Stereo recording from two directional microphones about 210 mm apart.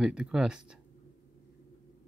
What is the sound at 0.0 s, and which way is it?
Speech, 5° right (ahead or behind).